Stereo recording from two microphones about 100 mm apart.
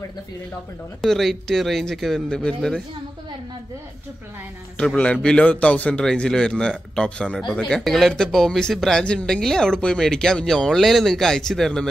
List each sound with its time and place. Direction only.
1.0 s speech: centre (ahead or behind)
4.7 s a man's voice: 10° left (ahead or behind)